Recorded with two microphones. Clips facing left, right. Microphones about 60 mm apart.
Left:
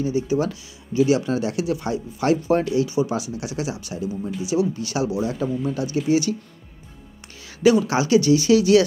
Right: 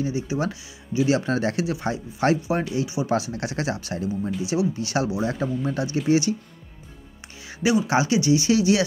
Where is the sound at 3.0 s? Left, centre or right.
Right.